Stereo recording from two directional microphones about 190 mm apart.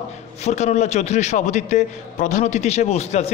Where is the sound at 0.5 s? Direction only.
35° left (ahead or behind).